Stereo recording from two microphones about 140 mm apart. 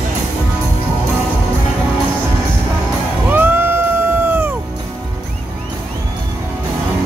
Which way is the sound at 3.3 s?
15° right (ahead or behind).